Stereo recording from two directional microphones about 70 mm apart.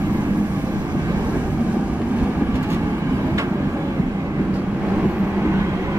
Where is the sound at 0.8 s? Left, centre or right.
Right.